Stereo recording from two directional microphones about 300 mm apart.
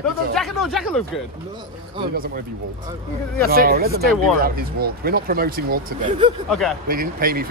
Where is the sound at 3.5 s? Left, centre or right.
Right.